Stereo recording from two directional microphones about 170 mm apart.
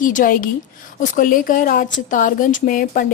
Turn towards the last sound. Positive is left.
turn(degrees=55)  # may be behind; listen again after turning